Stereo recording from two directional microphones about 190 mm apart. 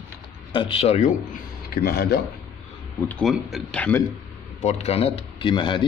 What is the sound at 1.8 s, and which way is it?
Speech, 55° left (ahead or behind).